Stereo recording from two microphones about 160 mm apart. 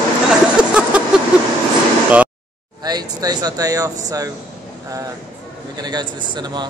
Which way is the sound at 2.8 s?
25° right (ahead or behind).